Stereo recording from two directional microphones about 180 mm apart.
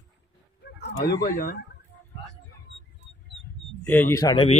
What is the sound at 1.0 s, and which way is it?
Chicken, 55° left (ahead or behind).